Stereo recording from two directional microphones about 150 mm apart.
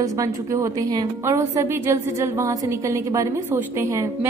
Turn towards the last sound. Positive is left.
turn(degrees=-20)  # may be behind; listen again after turning